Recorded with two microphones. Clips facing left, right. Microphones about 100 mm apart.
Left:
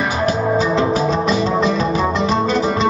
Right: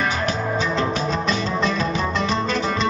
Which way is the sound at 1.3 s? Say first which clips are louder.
Left 6 dB; 35° left (ahead or behind).